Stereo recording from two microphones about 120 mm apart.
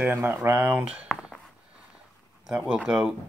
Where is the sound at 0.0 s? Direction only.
15° right (ahead or behind).